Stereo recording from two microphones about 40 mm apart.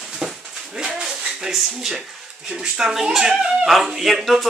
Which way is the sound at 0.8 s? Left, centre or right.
Centre.